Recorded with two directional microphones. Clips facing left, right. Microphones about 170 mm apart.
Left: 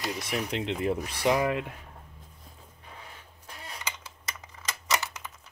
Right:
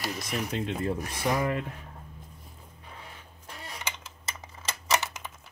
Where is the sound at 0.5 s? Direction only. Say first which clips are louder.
Right 2 dB; 90° left.